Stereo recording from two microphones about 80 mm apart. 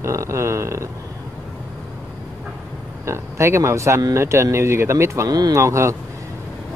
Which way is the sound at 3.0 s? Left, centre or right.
Right.